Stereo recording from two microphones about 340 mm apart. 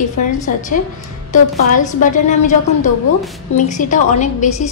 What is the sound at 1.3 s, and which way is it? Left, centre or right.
A woman's voice, left.